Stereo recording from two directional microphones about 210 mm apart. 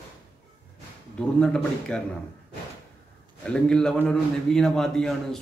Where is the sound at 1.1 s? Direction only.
5° left (ahead or behind).